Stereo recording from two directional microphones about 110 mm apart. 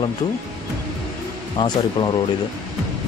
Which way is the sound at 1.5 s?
45° left (ahead or behind).